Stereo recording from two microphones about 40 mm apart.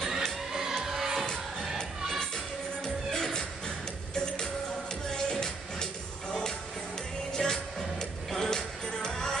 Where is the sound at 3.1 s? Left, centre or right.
Centre.